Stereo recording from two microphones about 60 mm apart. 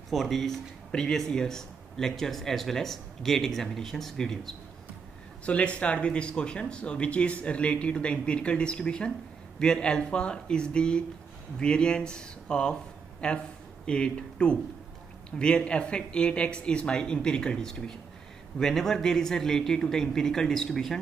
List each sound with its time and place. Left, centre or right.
0.1 s speech: centre
5.4 s speech: left